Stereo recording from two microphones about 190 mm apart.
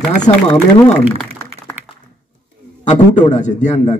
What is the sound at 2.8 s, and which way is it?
Speech, 40° left (ahead or behind).